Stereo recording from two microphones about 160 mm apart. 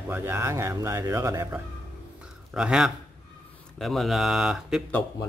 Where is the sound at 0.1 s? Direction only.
15° right (ahead or behind).